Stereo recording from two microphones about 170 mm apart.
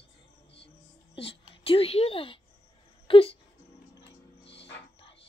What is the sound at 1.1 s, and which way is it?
Whispering, 35° left (ahead or behind).